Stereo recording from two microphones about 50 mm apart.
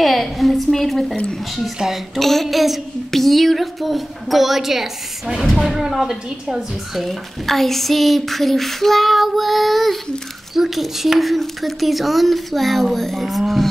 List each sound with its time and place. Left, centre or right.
0.0 s speech: centre
2.1 s a woman's voice: centre
7.1 s speech: centre